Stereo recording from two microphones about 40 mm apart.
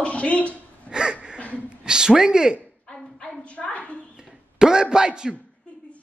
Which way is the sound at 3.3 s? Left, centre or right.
Left.